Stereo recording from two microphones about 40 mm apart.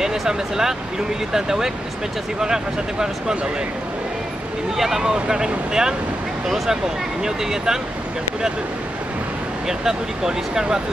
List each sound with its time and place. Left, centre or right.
0.0 s speech: centre
4.7 s speech: centre
7.2 s speech: centre
9.7 s speech: centre